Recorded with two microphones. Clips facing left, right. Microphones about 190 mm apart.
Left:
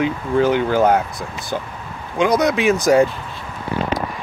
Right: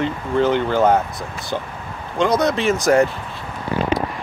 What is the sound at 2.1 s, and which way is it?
Speech, 15° left (ahead or behind).